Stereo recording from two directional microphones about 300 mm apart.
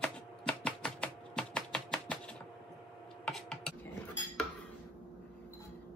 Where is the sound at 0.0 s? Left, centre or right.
Centre.